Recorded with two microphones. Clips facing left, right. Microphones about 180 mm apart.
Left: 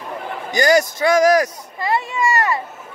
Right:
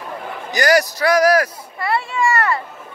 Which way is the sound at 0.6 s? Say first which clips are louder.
Left 1 dB; 20° left (ahead or behind).